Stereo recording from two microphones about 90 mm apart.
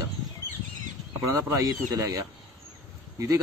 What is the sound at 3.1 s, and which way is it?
Speech, 35° right (ahead or behind).